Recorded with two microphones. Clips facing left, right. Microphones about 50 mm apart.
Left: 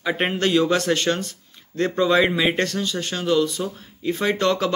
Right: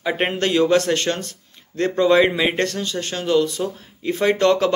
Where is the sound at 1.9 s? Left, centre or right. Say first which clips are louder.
Right 3 dB; right.